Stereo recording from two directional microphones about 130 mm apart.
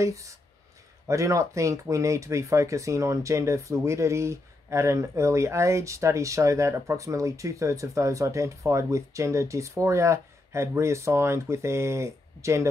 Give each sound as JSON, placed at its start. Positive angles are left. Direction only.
{"t": 0.0, "sound": "speech", "side_deg": -25}